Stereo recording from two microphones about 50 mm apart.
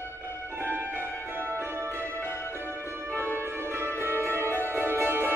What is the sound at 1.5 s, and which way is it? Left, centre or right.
Music, right.